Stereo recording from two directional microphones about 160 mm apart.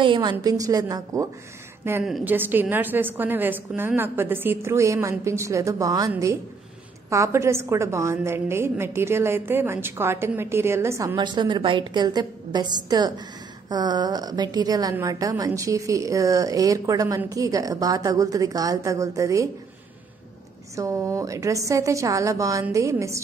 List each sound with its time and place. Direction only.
0.0 s a woman's voice: 30° right (ahead or behind)
2.0 s a woman's voice: centre (ahead or behind)
11.1 s a woman's voice: 30° right (ahead or behind)
20.7 s a woman's voice: 20° right (ahead or behind)